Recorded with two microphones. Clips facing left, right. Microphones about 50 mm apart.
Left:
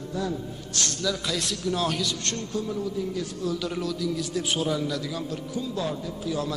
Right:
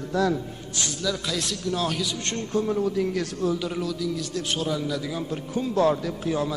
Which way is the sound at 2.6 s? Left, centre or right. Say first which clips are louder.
Right 6 dB; right.